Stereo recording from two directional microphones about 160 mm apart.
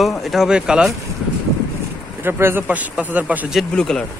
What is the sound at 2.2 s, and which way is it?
Speech, 15° right (ahead or behind).